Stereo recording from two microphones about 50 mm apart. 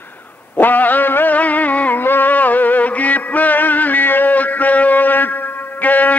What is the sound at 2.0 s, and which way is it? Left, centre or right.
Music, left.